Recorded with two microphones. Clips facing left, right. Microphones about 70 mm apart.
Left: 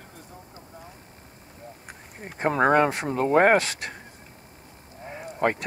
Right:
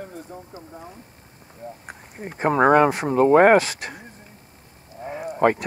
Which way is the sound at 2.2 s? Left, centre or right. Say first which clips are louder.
Right 4 dB; centre.